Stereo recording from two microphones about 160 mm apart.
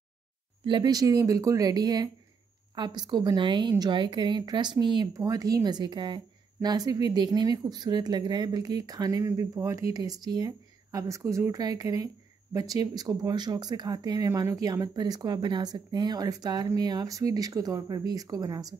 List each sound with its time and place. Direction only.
0.7 s a woman's voice: 25° right (ahead or behind)